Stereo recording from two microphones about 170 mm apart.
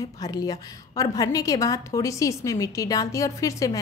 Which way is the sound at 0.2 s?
20° left (ahead or behind).